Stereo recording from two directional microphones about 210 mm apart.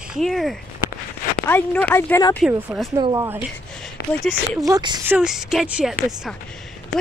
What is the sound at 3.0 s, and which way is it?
Speech, 15° right (ahead or behind).